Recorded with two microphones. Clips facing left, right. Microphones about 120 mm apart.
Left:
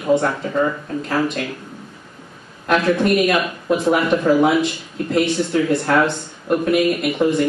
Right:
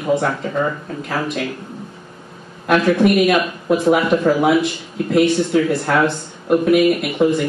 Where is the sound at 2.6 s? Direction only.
5° right (ahead or behind).